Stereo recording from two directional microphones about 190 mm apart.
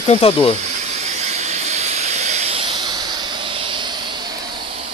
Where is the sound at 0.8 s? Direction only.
35° right (ahead or behind).